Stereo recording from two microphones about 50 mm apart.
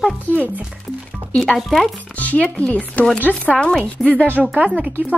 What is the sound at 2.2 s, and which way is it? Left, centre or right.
Speech, left.